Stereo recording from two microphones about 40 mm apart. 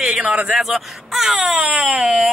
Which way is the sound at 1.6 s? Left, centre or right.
Right.